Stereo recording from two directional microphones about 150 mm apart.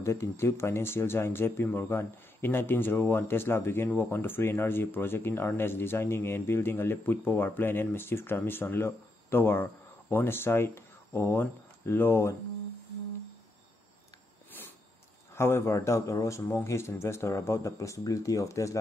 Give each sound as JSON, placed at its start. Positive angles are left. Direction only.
{"t": 0.0, "sound": "speech", "side_deg": 20}
{"t": 15.3, "sound": "speech", "side_deg": 15}